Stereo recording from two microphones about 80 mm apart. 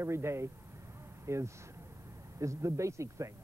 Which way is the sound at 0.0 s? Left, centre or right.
Right.